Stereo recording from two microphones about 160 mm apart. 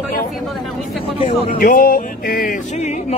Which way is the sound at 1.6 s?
60° left (ahead or behind).